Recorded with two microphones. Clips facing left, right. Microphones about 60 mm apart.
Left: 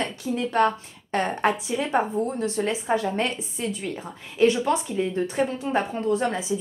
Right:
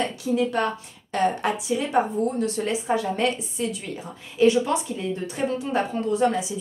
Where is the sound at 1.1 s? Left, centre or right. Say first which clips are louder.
Even; left.